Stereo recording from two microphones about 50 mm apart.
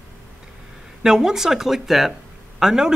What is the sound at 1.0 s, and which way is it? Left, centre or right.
Speech, centre.